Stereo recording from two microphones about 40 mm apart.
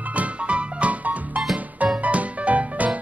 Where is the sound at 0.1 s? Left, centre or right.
Right.